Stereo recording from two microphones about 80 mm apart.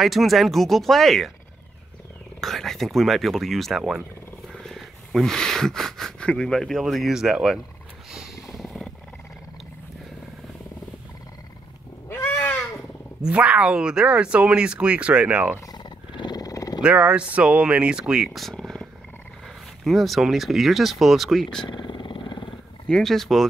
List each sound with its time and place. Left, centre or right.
0.0 s speech: centre
2.4 s speech: centre
8.1 s a sound: centre
13.2 s speech: centre
15.7 s roaring cats: left
16.8 s speech: centre
18.3 s purr: centre
19.8 s speech: centre
21.6 s vehicle: left
22.8 s speech: centre